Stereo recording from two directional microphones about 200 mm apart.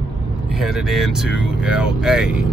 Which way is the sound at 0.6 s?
Centre (ahead or behind).